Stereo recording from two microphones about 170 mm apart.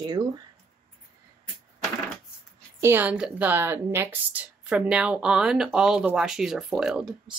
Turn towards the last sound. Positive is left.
turn(degrees=-5)  # may be behind; listen again after turning